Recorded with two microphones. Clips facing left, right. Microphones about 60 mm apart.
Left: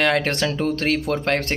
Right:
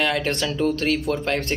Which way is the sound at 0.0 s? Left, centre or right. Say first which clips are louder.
Left 3 dB; left.